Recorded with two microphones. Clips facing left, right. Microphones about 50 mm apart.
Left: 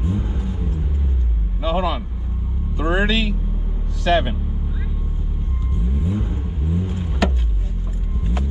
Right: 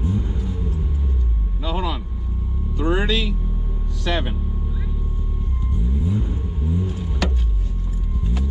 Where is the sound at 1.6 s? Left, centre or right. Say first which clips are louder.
Left 5 dB; left.